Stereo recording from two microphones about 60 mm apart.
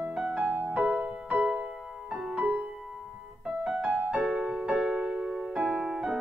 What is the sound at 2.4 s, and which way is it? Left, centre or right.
Music, right.